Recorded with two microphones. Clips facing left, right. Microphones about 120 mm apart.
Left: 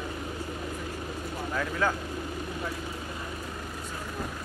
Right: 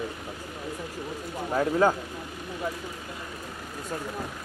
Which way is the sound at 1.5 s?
35° right (ahead or behind).